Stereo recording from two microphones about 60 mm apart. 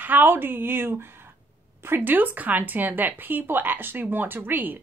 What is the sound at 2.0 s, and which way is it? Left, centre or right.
Speech, right.